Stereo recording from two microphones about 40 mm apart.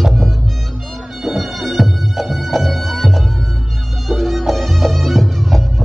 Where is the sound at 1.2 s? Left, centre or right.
Centre.